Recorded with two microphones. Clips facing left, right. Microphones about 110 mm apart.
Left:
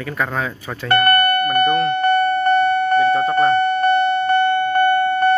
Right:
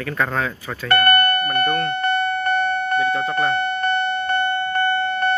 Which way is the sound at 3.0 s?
35° left (ahead or behind).